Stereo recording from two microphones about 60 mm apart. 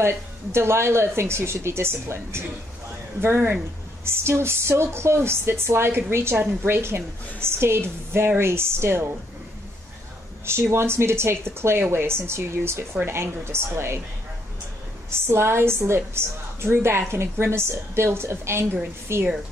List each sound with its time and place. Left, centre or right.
0.0 s a woman's voice: right
10.4 s a woman's voice: right
15.1 s a woman's voice: right